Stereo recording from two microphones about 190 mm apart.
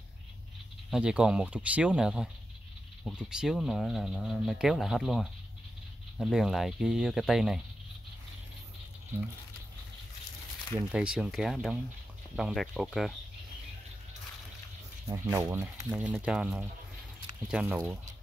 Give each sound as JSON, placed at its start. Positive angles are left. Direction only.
{"t": 0.8, "sound": "speech", "side_deg": -5}
{"t": 10.9, "sound": "speech", "side_deg": -5}
{"t": 15.0, "sound": "speech", "side_deg": -15}